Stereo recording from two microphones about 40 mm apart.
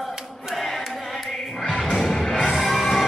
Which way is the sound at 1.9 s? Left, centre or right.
Centre.